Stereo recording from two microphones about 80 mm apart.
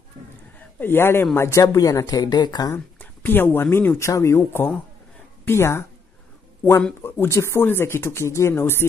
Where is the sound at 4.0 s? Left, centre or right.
Left.